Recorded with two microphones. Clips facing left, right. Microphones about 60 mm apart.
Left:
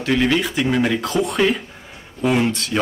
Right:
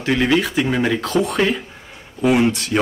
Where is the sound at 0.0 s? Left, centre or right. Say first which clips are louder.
Right 1 dB; centre.